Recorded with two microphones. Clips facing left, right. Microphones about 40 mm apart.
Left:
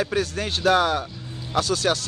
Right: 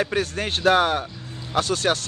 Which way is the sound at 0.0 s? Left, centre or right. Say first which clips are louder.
Right 1 dB; right.